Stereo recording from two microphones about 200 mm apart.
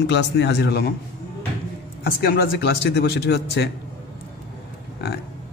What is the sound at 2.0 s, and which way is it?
A man's voice, 45° left (ahead or behind).